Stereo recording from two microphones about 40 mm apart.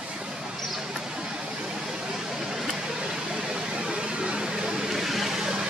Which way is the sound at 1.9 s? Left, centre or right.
Centre.